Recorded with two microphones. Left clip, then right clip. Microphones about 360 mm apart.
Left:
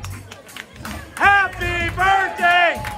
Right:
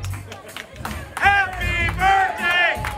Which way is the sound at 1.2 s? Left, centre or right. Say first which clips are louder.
Left 3 dB; centre.